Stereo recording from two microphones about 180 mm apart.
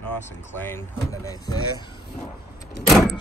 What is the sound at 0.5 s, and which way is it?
Speech, 10° left (ahead or behind).